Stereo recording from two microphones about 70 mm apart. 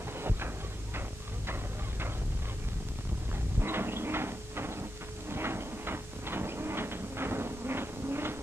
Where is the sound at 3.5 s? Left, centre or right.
Right.